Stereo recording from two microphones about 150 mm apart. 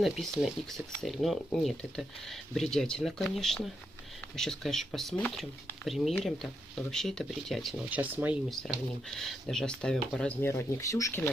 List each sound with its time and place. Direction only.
0.0 s speech: centre (ahead or behind)
8.0 s speech: 10° right (ahead or behind)
8.5 s speech: centre (ahead or behind)
10.5 s speech: 20° left (ahead or behind)